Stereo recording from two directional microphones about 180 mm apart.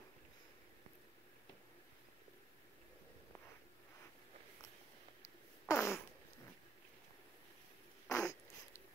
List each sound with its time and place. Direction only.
5.7 s fart: 15° left (ahead or behind)
8.1 s wheeze: 20° left (ahead or behind)